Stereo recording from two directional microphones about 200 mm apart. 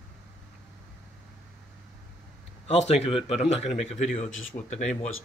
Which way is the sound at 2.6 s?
30° left (ahead or behind).